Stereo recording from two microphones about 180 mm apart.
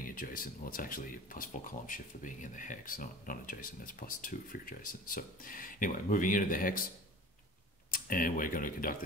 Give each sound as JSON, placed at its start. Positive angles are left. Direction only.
{"t": 0.0, "sound": "speech", "side_deg": 50}
{"t": 7.9, "sound": "speech", "side_deg": 50}